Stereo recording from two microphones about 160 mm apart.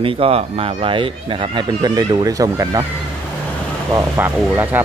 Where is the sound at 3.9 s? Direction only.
15° right (ahead or behind).